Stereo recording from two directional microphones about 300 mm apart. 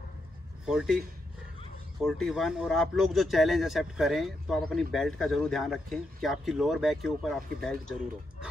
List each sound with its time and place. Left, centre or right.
0.7 s a man's voice: centre
2.0 s a man's voice: centre